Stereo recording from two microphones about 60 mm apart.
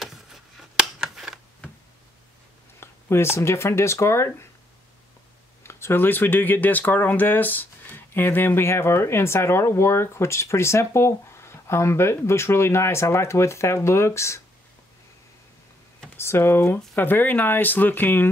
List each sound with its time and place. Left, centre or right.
0.0 s a sound: centre
2.8 s speech: left
5.6 s speech: left
16.2 s speech: left